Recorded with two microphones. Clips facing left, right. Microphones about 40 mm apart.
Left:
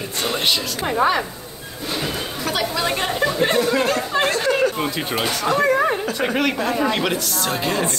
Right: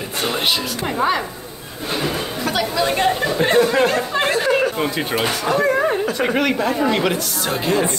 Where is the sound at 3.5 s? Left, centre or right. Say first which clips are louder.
Right 3 dB; centre.